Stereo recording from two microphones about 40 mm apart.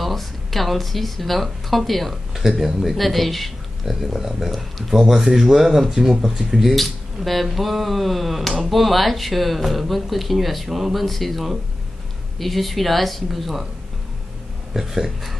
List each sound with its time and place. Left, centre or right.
0.0 s speech: centre
6.7 s speech: centre
14.7 s speech: centre